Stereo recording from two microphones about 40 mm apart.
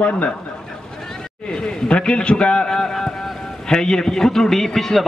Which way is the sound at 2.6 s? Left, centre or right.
Centre.